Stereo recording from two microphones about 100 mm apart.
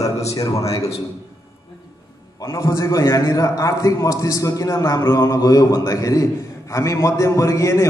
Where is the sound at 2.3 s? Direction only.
30° left (ahead or behind).